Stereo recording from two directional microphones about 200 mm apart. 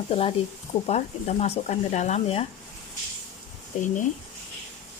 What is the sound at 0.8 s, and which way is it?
Speech, 30° left (ahead or behind).